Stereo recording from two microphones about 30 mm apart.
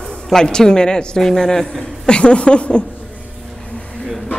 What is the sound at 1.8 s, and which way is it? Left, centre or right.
A woman's voice, left.